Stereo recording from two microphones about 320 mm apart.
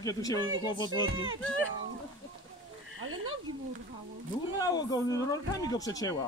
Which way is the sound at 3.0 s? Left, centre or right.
Right.